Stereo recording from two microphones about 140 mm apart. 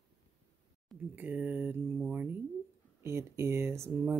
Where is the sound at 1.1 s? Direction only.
10° right (ahead or behind).